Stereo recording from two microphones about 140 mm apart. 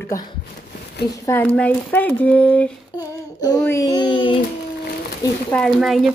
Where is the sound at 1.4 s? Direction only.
10° left (ahead or behind).